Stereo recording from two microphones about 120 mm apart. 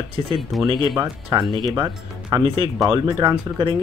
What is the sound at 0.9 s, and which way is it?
Speech, 30° right (ahead or behind).